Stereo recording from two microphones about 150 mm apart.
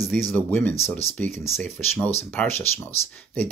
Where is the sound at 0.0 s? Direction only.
Centre (ahead or behind).